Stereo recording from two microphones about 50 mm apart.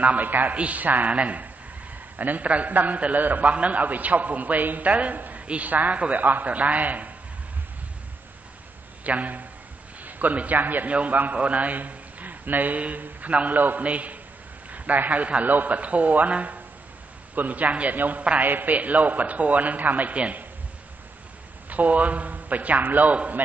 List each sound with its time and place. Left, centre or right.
0.0 s a man's voice: right
9.0 s a man's voice: right
21.6 s a man's voice: right